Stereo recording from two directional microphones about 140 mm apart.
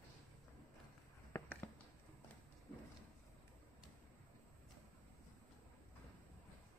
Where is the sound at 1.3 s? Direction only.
15° left (ahead or behind).